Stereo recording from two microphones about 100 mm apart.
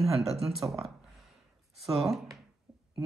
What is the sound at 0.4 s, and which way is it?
Speech, centre (ahead or behind).